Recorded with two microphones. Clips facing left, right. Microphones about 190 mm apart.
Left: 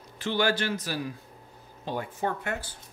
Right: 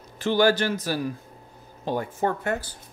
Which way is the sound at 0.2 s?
40° right (ahead or behind).